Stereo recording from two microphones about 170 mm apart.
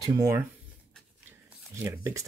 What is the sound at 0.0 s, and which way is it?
Speech, 15° right (ahead or behind).